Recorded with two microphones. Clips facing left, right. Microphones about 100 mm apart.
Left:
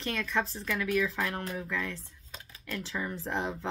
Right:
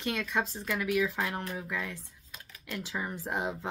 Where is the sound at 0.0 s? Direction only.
15° right (ahead or behind).